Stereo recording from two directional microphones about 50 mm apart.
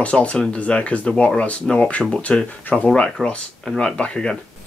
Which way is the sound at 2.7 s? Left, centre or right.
Left.